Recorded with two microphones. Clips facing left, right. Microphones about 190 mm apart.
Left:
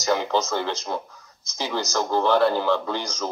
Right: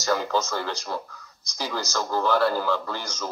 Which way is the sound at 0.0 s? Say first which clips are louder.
Left 2 dB; 20° left (ahead or behind).